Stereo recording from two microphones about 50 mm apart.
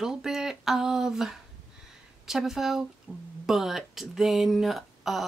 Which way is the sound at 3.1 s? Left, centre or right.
Left.